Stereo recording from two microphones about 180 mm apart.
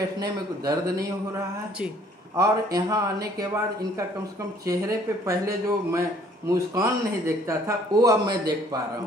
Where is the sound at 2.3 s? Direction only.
20° right (ahead or behind).